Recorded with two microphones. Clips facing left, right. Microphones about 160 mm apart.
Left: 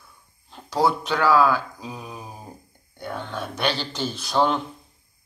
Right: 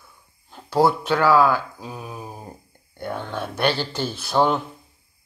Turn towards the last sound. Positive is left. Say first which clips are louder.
# right 2 dB
turn(degrees=-10)  # may be behind; listen again after turning